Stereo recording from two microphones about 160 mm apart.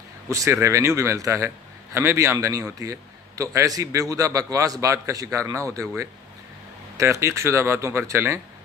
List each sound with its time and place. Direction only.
0.3 s a man's voice: 20° right (ahead or behind)